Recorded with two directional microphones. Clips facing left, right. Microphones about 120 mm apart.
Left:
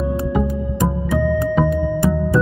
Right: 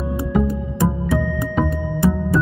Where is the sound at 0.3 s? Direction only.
5° left (ahead or behind).